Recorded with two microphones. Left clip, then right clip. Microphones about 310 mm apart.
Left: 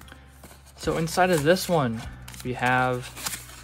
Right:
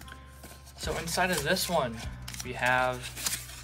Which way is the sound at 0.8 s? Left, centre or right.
Left.